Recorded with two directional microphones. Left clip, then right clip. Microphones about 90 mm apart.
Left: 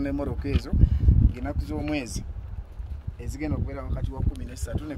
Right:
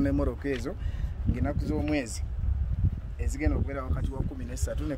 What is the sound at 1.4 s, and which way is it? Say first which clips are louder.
Speech: right 1 dB; 25° right (ahead or behind).